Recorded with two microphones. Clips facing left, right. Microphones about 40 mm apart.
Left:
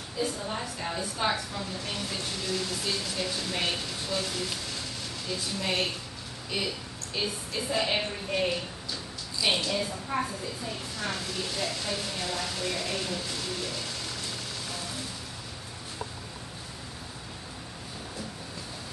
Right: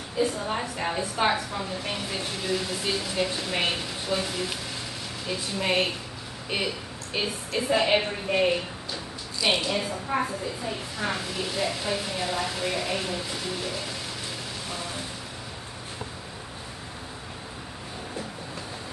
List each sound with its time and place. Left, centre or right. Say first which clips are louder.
0.2 s a woman's voice: right 5 dB; right